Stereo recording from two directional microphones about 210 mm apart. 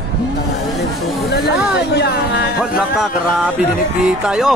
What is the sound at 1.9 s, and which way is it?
Speech, 55° left (ahead or behind).